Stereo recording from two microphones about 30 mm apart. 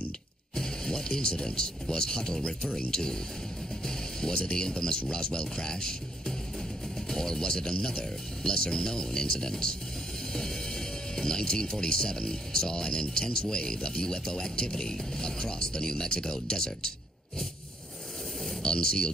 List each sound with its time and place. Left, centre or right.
0.6 s a man's voice: left
18.6 s speech: left